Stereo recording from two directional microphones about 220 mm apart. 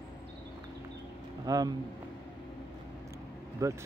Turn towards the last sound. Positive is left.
turn(degrees=-15)  # may be behind; listen again after turning